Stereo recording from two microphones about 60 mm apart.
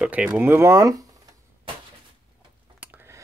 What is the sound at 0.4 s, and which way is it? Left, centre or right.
Speech, right.